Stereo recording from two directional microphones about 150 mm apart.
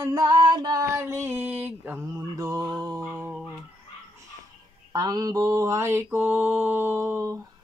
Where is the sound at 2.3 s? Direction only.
25° right (ahead or behind).